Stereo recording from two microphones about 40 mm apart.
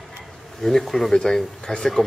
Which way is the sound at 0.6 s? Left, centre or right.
Centre.